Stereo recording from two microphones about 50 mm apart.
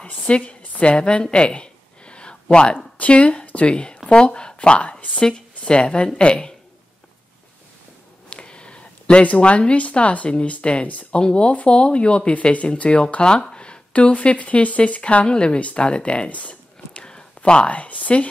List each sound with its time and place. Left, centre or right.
0.0 s a woman's voice: left
8.3 s speech: left